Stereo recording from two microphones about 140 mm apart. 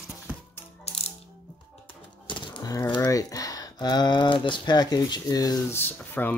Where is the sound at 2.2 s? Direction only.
35° left (ahead or behind).